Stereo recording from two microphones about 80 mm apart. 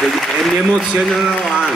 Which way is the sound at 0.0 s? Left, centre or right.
Centre.